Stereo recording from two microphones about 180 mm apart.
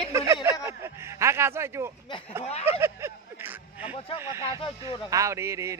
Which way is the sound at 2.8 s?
15° right (ahead or behind).